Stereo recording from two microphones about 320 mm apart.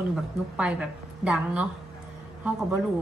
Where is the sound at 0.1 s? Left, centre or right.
Centre.